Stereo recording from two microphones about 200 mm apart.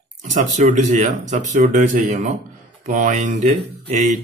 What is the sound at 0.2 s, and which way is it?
Speech, 35° right (ahead or behind).